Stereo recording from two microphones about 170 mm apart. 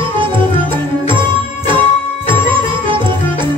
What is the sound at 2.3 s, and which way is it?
Music, 30° right (ahead or behind).